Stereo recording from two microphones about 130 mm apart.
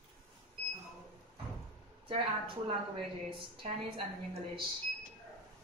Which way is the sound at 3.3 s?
40° right (ahead or behind).